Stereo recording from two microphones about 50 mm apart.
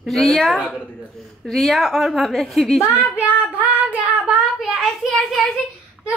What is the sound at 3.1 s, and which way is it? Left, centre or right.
Child singing, right.